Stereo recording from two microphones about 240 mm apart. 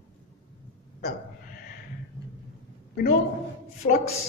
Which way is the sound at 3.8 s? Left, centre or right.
Left.